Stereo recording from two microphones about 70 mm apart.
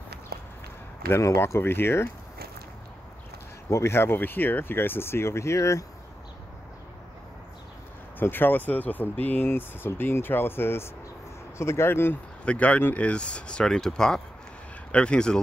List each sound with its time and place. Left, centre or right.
1.2 s speech: left
1.6 s speech: left
3.7 s speech: left
8.2 s speech: left
12.4 s speech: centre